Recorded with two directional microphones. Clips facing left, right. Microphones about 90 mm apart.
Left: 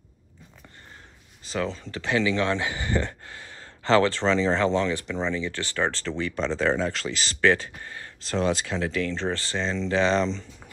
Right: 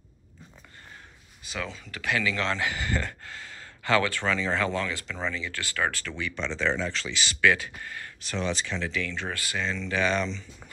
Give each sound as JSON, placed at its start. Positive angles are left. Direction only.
{"t": 1.5, "sound": "speech", "side_deg": 35}
{"t": 8.4, "sound": "speech", "side_deg": 45}